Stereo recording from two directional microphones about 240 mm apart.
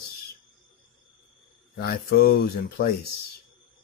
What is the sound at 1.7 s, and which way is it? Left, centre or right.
Speech, left.